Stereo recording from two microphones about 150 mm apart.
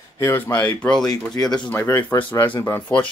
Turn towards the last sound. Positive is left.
turn(degrees=10)  # may be behind; listen again after turning